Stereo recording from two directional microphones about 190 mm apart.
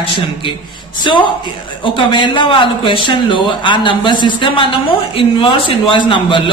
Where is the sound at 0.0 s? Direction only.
25° left (ahead or behind).